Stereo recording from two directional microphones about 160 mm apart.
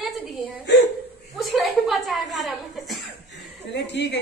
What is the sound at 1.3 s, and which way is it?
A woman's voice, centre (ahead or behind).